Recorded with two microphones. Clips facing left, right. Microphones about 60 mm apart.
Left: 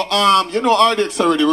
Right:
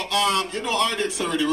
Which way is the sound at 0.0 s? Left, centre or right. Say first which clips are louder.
Left 8 dB; left.